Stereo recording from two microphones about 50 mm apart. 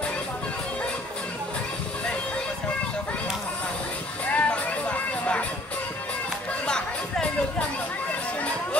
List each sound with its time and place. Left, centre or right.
4.3 s music: left
6.6 s music: centre